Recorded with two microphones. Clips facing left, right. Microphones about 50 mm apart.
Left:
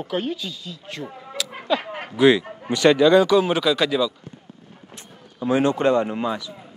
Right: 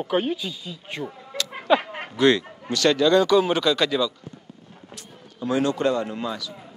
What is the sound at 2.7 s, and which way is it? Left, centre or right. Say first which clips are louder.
A man's voice: left 4 dB; centre.